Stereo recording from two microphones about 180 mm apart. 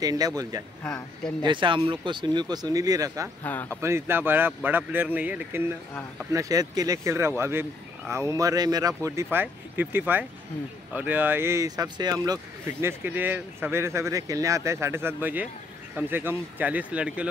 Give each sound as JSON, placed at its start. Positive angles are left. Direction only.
{"t": 0.0, "sound": "speech", "side_deg": -20}
{"t": 0.8, "sound": "a man's voice", "side_deg": 5}
{"t": 1.4, "sound": "speech", "side_deg": -25}
{"t": 3.5, "sound": "speech", "side_deg": 10}
{"t": 3.8, "sound": "speech", "side_deg": -15}
{"t": 6.3, "sound": "speech", "side_deg": -20}